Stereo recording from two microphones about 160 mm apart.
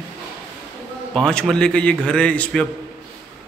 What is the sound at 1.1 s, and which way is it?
A man's voice, 5° left (ahead or behind).